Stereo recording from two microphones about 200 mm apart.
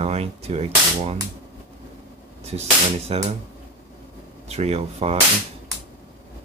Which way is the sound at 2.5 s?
30° right (ahead or behind).